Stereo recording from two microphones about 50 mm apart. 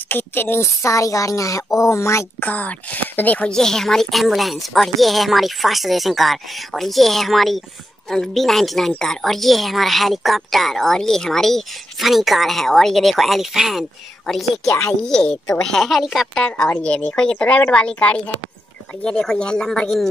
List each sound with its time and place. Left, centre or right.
0.1 s speech: left
0.8 s speech: left
2.4 s speech: left
3.4 s a woman's voice: centre
12.0 s a woman's voice: centre
14.2 s a woman's voice: centre
16.3 s a woman's voice: centre
19.0 s speech: centre